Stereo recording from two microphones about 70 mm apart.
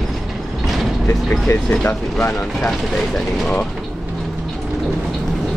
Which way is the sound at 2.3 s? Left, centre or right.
Centre.